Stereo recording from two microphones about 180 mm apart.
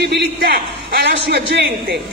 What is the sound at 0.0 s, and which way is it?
A man's voice, 65° right (ahead or behind).